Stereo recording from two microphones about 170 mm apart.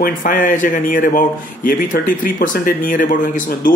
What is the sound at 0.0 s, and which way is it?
Speech, 55° left (ahead or behind).